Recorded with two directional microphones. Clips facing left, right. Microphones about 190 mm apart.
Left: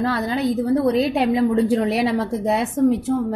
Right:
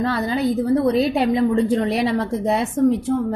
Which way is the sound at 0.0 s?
Centre (ahead or behind).